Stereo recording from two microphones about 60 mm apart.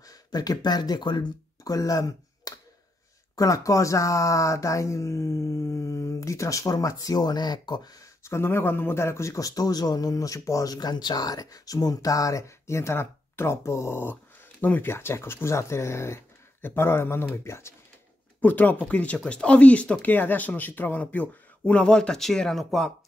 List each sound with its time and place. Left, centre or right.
0.0 s speech: left
1.6 s a sound: left
3.3 s speech: left
7.8 s speech: left
8.2 s speech: left
14.6 s speech: left
14.9 s speech: left
18.4 s speech: left; by 22.9 s centre